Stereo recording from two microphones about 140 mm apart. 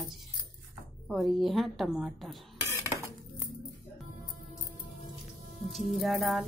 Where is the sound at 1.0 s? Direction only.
Centre (ahead or behind).